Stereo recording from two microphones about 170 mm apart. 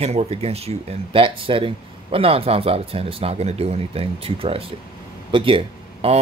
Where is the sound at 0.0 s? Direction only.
40° right (ahead or behind).